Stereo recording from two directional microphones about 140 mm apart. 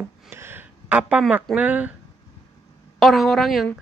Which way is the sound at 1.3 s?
10° right (ahead or behind).